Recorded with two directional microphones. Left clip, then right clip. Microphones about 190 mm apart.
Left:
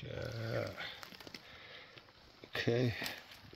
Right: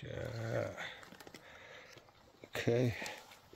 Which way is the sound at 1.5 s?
5° right (ahead or behind).